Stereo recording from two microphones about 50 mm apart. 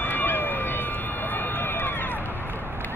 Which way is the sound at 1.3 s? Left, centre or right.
Left.